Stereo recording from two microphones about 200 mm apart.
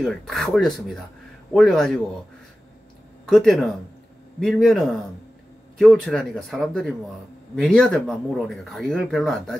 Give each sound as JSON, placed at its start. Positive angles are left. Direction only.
{"t": 0.0, "sound": "speech", "side_deg": 0}
{"t": 3.3, "sound": "speech", "side_deg": 0}